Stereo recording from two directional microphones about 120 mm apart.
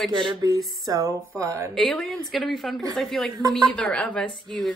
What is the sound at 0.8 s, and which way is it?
Speech, 30° right (ahead or behind).